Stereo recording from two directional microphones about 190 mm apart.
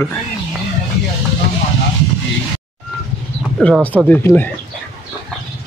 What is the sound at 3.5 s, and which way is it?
Throat clearing, 5° left (ahead or behind).